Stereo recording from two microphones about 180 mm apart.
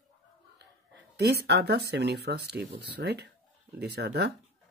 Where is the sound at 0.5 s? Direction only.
70° right (ahead or behind).